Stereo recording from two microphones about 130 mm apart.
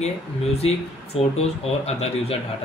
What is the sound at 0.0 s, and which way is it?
Speech, 55° left (ahead or behind).